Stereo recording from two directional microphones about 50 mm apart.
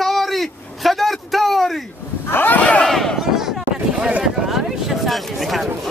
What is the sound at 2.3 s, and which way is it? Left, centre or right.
Speech, left.